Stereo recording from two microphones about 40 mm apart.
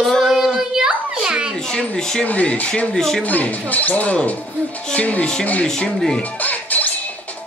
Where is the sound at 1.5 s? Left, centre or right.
Centre.